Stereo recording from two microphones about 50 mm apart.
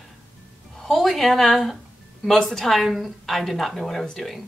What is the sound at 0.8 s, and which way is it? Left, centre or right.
A woman's voice, centre.